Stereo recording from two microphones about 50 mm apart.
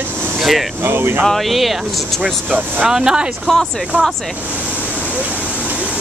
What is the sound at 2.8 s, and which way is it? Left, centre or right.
Speech, centre.